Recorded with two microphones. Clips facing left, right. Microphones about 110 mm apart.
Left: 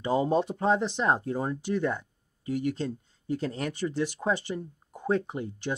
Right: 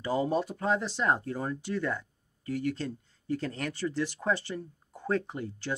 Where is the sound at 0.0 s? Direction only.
25° left (ahead or behind).